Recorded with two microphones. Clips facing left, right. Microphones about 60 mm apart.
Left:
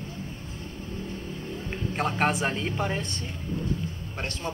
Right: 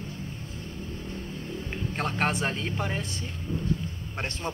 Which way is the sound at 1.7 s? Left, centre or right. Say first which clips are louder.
Left 3 dB; centre.